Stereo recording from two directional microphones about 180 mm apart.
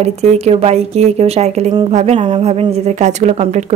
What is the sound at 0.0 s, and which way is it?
Speech, 35° right (ahead or behind).